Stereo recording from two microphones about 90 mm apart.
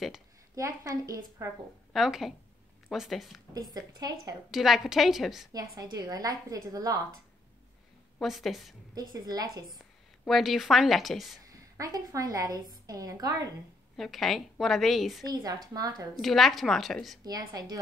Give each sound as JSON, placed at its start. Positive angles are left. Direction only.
{"t": 0.6, "sound": "a woman's voice", "side_deg": -40}
{"t": 1.9, "sound": "a woman's voice", "side_deg": 0}
{"t": 3.5, "sound": "a woman's voice", "side_deg": -45}
{"t": 4.5, "sound": "a woman's voice", "side_deg": -5}
{"t": 5.5, "sound": "a woman's voice", "side_deg": -45}
{"t": 8.2, "sound": "a woman's voice", "side_deg": 0}
{"t": 8.9, "sound": "a woman's voice", "side_deg": -45}
{"t": 10.2, "sound": "a woman's voice", "side_deg": 0}
{"t": 11.5, "sound": "a woman's voice", "side_deg": -40}
{"t": 13.9, "sound": "a woman's voice", "side_deg": 5}
{"t": 15.2, "sound": "a woman's voice", "side_deg": -45}
{"t": 16.2, "sound": "a woman's voice", "side_deg": 0}
{"t": 17.2, "sound": "a woman's voice", "side_deg": -45}